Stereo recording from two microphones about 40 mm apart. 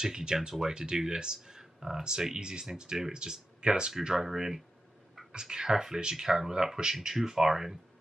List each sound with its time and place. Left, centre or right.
0.0 s speech: centre
4.1 s speech: centre